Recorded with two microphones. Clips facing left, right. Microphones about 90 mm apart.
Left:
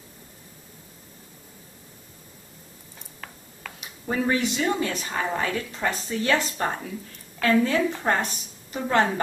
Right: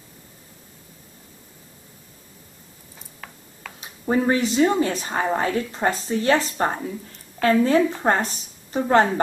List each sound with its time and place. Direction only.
3.8 s a woman's voice: 30° right (ahead or behind)